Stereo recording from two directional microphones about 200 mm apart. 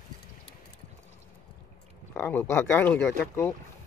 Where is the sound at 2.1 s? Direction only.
10° left (ahead or behind).